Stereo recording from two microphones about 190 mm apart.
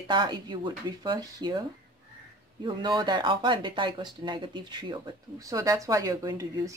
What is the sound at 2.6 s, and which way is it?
Speech, 25° right (ahead or behind).